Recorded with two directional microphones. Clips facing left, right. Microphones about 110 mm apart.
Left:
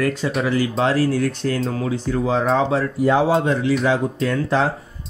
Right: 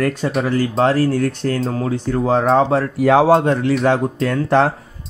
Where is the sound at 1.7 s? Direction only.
40° right (ahead or behind).